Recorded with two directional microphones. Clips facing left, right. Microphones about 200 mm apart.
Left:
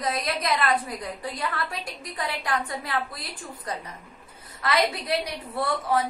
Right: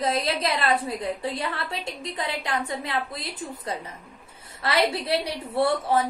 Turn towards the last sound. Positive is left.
turn(degrees=-30)  # may be behind; listen again after turning